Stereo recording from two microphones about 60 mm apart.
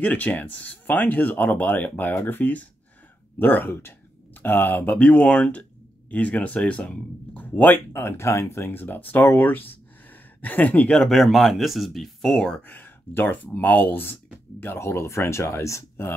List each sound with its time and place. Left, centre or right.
0.0 s speech: left
4.9 s speech: left
11.0 s speech: centre
12.4 s speech: centre
12.6 s speech: left
14.9 s speech: left